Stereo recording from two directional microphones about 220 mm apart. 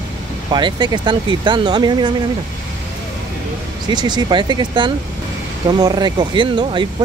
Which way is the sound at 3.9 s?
20° right (ahead or behind).